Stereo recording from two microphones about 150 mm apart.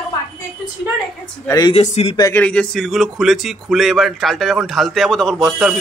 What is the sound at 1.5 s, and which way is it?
Speech, 25° left (ahead or behind).